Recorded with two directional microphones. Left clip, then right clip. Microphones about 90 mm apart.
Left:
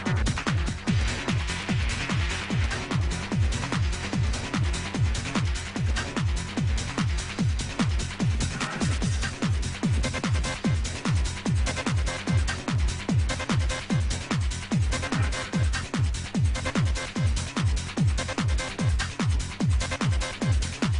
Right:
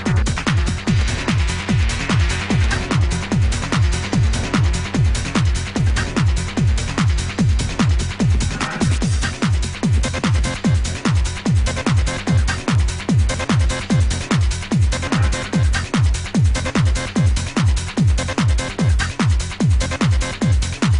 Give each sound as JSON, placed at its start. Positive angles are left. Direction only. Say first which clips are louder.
{"t": 0.0, "sound": "music", "louder": "right 7 dB", "side_deg": -40}